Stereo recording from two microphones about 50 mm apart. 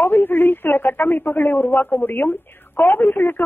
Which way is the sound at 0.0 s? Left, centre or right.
Left.